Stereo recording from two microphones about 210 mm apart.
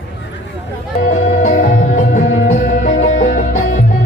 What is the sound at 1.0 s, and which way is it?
Music, 35° left (ahead or behind).